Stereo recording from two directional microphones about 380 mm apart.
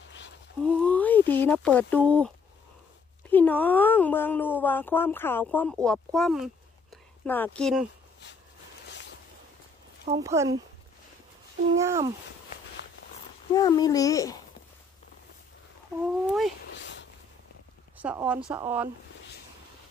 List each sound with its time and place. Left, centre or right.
0.6 s speech: centre
10.0 s speech: centre
11.8 s speech: centre
13.5 s a child's voice: centre
16.1 s speech: centre
16.7 s a sound: left
17.9 s speech: centre